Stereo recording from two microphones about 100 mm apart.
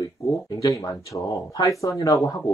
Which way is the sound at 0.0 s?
30° left (ahead or behind).